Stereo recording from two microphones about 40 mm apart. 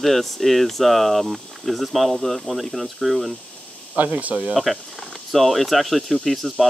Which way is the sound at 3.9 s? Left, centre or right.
Right.